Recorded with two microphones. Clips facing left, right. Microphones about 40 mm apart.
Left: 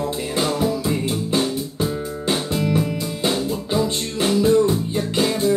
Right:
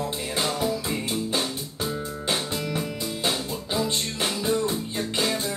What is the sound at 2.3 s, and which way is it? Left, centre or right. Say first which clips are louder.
Music: left 7 dB; centre.